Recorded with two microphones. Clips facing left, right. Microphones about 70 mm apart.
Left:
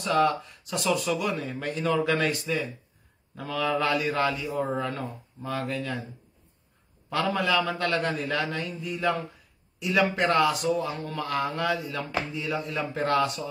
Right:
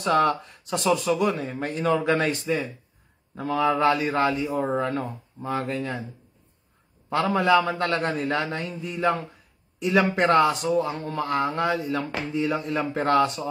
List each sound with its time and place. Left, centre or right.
0.0 s speech: right
7.1 s a man's voice: right